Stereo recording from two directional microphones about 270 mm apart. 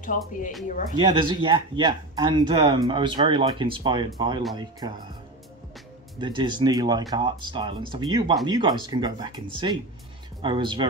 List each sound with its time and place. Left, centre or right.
0.9 s speech: centre
6.1 s speech: centre